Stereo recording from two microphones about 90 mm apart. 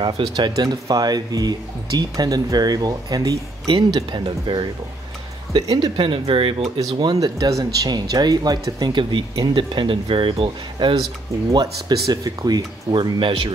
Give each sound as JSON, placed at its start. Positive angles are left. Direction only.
{"t": 0.0, "sound": "speech", "side_deg": -60}
{"t": 0.5, "sound": "speech", "side_deg": -45}
{"t": 3.6, "sound": "speech", "side_deg": -65}
{"t": 5.6, "sound": "speech", "side_deg": -45}
{"t": 5.9, "sound": "speech", "side_deg": -75}
{"t": 6.8, "sound": "speech", "side_deg": -50}
{"t": 11.6, "sound": "speech", "side_deg": -40}